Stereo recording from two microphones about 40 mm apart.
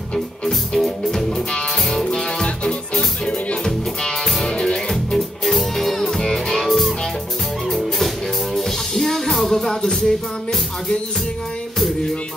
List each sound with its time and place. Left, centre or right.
0.7 s music: centre
3.6 s music: centre
5.1 s music: centre
8.5 s music: centre